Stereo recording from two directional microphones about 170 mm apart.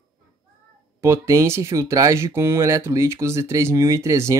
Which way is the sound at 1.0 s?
15° right (ahead or behind).